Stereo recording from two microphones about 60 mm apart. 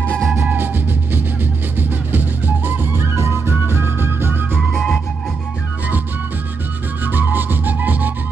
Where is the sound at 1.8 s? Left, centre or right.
Right.